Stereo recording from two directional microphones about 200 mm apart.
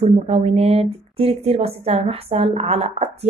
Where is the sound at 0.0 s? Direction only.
35° right (ahead or behind).